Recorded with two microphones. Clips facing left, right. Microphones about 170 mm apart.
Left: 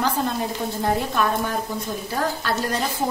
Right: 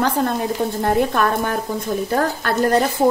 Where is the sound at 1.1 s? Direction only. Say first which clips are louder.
Right 3 dB; 60° right (ahead or behind).